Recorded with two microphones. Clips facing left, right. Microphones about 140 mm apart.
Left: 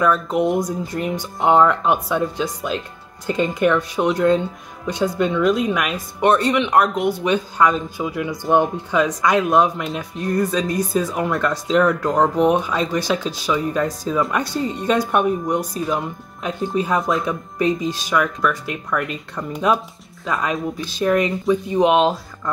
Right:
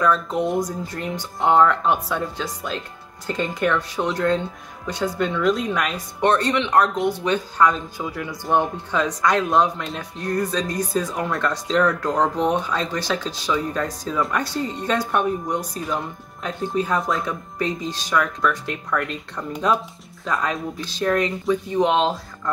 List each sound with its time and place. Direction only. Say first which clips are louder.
0.0 s speech: left 3 dB; 5° left (ahead or behind)